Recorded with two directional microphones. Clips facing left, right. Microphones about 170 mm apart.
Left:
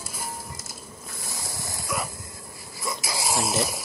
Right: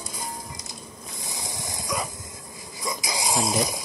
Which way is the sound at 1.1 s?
20° right (ahead or behind).